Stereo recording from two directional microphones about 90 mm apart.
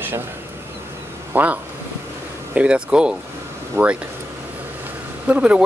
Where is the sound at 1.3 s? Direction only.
20° right (ahead or behind).